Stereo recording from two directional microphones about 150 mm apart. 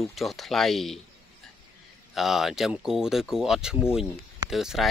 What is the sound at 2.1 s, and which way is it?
Speech, centre (ahead or behind).